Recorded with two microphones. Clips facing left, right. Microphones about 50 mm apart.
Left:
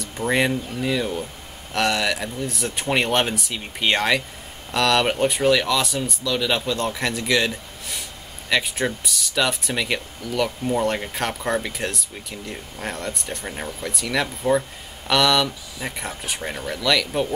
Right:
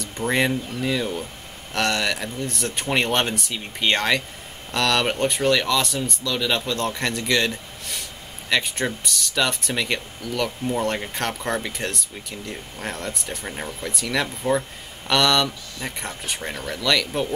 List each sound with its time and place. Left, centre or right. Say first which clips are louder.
0.0 s speech: left 1 dB; centre